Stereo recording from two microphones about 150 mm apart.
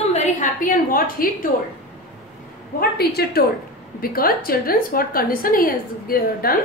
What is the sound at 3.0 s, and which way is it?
Speech, 90° left.